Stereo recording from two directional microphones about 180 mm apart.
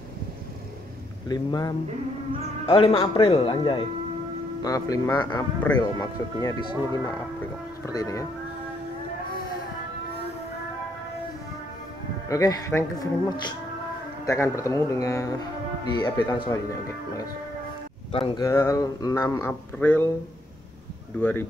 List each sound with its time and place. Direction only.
1.3 s speech: 20° left (ahead or behind)
2.6 s speech: 30° left (ahead or behind)
7.8 s speech: 20° left (ahead or behind)
12.3 s speech: 20° left (ahead or behind)
18.1 s speech: 30° left (ahead or behind)
18.4 s speech: 15° left (ahead or behind)
21.2 s speech: 10° left (ahead or behind)